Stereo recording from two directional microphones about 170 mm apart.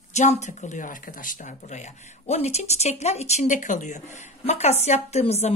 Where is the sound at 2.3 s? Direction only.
40° left (ahead or behind).